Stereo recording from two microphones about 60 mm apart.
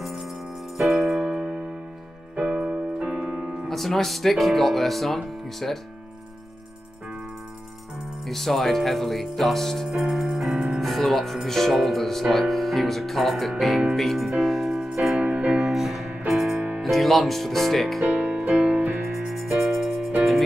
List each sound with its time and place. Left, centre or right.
0.0 s music: centre
1.2 s music: centre
2.3 s keyboard: centre
3.6 s speech: centre
8.3 s speech: centre
9.9 s music: centre
11.4 s speech: centre
15.2 s music: right
15.5 s music: centre
16.8 s speech: centre
18.0 s music: right
18.9 s music: right
19.1 s music: centre